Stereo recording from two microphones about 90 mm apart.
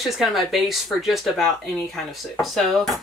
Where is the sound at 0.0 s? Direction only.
Centre (ahead or behind).